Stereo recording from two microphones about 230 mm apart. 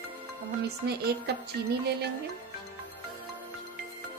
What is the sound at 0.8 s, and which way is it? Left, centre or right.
Speech, right.